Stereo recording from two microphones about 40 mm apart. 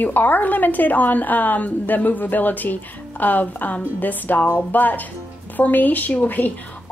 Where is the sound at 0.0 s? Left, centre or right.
Left.